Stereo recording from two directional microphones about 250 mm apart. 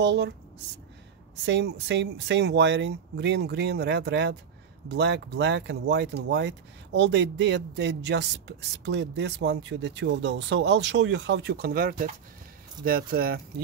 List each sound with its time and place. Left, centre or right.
0.0 s speech: right
1.4 s speech: right